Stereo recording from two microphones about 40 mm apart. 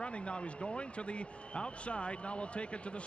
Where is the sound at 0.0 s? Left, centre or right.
Left.